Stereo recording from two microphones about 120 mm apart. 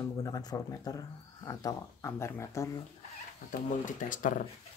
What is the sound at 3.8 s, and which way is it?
Speech, 90° left.